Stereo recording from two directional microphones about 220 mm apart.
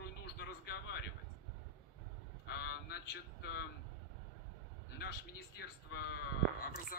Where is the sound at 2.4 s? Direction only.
45° left (ahead or behind).